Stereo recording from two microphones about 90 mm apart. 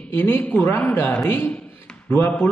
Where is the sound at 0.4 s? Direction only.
20° left (ahead or behind).